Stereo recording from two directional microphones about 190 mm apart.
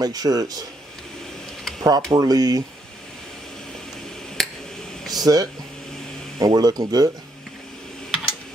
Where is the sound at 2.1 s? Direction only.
20° right (ahead or behind).